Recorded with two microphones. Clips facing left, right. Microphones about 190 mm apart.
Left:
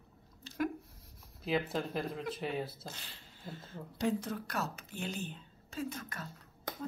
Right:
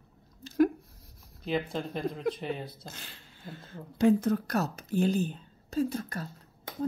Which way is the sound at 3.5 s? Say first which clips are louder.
Right 2 dB; 60° right (ahead or behind).